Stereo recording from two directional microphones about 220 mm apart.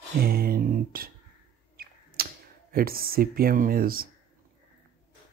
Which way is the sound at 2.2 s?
40° right (ahead or behind).